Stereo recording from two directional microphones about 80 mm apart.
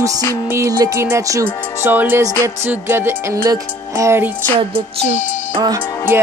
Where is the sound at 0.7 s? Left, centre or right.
Right.